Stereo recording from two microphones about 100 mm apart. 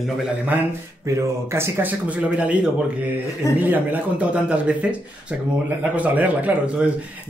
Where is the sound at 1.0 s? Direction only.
30° right (ahead or behind).